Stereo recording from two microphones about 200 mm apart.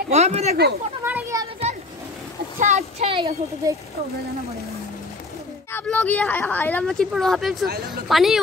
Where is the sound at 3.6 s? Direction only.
15° right (ahead or behind).